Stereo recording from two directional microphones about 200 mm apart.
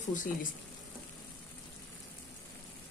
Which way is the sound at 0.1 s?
40° left (ahead or behind).